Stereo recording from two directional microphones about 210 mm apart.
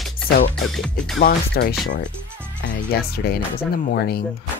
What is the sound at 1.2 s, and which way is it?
Speech, 50° left (ahead or behind).